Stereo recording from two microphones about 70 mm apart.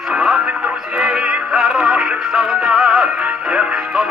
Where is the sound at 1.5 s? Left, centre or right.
Centre.